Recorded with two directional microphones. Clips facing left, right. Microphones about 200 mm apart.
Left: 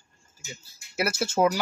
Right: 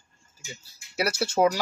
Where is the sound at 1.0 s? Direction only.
5° left (ahead or behind).